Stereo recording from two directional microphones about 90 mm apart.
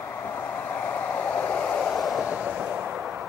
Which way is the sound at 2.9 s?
10° right (ahead or behind).